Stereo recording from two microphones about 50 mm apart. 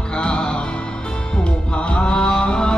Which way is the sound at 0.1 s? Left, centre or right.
Centre.